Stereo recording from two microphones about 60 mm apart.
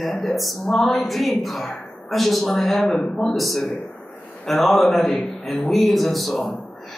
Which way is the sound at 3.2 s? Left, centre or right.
Centre.